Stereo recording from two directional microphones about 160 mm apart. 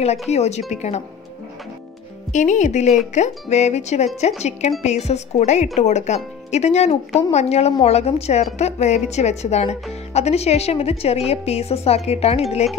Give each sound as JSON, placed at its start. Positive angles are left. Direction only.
{"t": 0.3, "sound": "a woman's voice", "side_deg": 45}
{"t": 2.3, "sound": "a woman's voice", "side_deg": 50}